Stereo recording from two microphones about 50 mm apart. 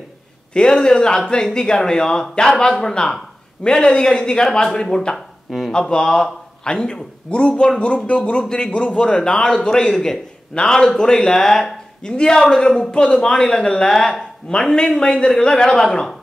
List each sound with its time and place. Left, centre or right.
0.5 s a man's voice: centre